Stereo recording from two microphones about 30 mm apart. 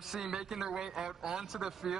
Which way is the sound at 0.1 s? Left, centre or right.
Centre.